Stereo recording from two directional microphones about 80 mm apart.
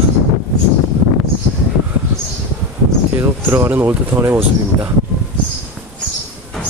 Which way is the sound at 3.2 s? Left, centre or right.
Right.